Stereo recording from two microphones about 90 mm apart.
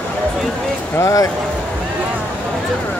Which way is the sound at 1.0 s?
40° left (ahead or behind).